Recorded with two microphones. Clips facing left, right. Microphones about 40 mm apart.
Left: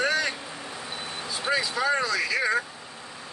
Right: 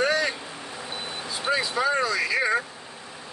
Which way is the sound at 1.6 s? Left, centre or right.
Centre.